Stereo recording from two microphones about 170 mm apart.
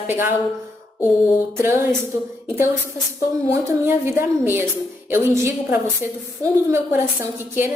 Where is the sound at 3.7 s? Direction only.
15° right (ahead or behind).